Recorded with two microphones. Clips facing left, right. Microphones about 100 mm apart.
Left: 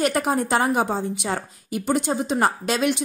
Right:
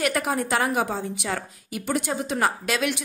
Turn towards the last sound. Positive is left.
turn(degrees=30)  # may be behind; listen again after turning